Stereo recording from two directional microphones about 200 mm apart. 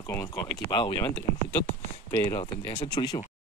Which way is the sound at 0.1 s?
15° left (ahead or behind).